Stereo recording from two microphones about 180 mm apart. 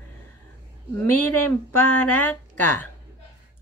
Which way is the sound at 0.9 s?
10° left (ahead or behind).